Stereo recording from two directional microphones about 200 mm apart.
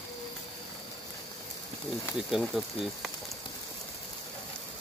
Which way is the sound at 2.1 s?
Centre (ahead or behind).